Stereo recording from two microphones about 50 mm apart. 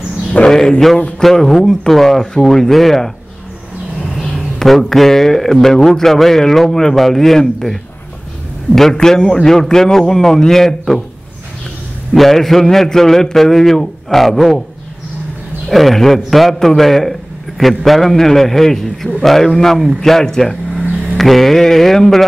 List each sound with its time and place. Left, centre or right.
0.3 s a sound: left
1.2 s a man's voice: centre
4.0 s a sound: centre
4.6 s a man's voice: centre
8.9 s a man's voice: centre
12.1 s a man's voice: centre
15.7 s a man's voice: centre